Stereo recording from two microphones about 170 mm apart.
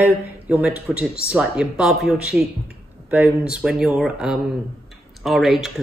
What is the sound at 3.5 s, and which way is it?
Speech, 5° right (ahead or behind).